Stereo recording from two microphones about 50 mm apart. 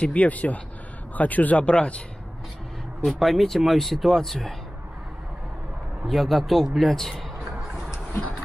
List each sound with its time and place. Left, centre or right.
0.0 s speech: left
3.1 s speech: centre
6.0 s a man's voice: centre